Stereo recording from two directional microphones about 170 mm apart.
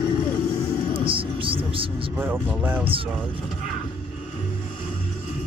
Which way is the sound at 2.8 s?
30° right (ahead or behind).